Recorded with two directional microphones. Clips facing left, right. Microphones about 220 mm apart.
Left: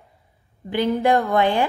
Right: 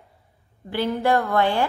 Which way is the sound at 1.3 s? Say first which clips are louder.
Left 2 dB; 15° left (ahead or behind).